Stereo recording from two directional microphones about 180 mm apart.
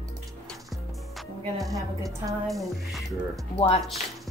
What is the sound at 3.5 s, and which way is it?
Speech, 30° left (ahead or behind).